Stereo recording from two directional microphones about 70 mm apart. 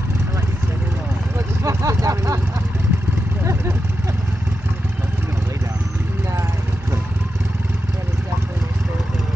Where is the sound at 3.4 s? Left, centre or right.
Right.